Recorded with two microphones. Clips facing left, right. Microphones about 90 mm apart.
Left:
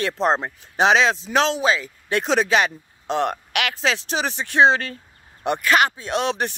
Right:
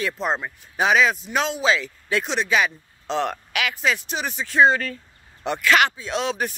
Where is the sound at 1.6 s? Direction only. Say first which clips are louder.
Even; 35° left (ahead or behind).